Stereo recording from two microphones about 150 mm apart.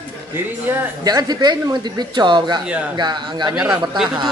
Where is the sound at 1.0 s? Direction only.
25° right (ahead or behind).